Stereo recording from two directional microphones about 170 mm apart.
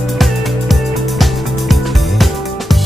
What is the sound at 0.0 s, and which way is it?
Music, centre (ahead or behind).